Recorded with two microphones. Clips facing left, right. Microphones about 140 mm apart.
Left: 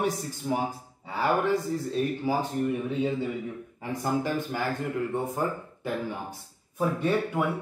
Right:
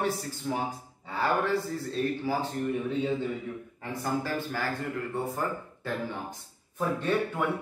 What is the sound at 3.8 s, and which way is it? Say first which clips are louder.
Speech: left 3 dB; 15° left (ahead or behind).